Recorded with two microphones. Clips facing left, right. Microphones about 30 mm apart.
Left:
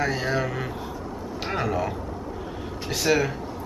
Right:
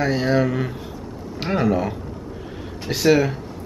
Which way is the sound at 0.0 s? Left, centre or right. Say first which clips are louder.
Right 6 dB; centre.